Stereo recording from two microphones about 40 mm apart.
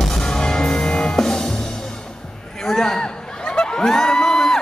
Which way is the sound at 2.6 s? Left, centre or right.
Centre.